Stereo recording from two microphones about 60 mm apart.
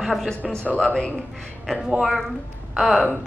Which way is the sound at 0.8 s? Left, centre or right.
Centre.